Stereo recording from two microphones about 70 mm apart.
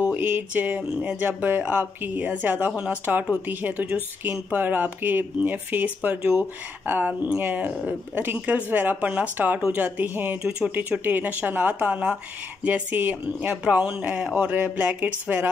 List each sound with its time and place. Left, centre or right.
0.0 s speech: right
2.7 s speech: centre
3.4 s speech: right